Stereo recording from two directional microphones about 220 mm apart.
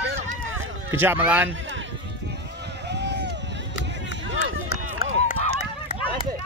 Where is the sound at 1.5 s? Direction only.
60° right (ahead or behind).